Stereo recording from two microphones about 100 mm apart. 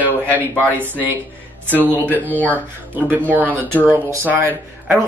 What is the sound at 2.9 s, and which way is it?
Speech, 15° right (ahead or behind).